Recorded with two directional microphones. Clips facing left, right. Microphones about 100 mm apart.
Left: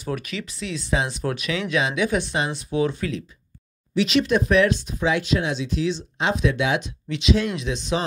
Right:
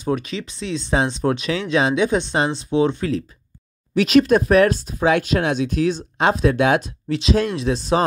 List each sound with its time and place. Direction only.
0.0 s speech: 25° right (ahead or behind)
3.9 s speech: 50° right (ahead or behind)